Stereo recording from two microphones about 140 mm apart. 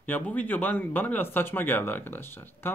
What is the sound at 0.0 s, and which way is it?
Speech, 10° left (ahead or behind).